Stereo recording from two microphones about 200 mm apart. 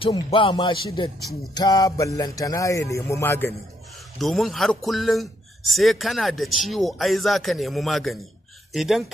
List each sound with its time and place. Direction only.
0.0 s speech: 25° left (ahead or behind)
4.2 s a man's voice: centre (ahead or behind)